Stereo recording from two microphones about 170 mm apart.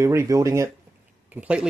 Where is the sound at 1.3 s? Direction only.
5° right (ahead or behind).